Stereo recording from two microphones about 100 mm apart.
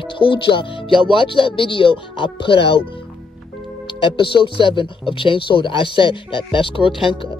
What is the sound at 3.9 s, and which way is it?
Speech, 55° left (ahead or behind).